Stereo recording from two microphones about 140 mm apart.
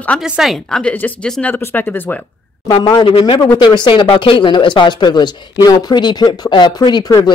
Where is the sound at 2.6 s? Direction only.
30° left (ahead or behind).